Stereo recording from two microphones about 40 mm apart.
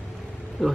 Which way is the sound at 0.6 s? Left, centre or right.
Centre.